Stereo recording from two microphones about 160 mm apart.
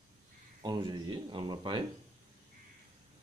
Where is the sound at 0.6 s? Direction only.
25° right (ahead or behind).